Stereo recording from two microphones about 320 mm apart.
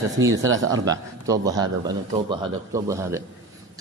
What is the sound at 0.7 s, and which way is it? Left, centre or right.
Speech, centre.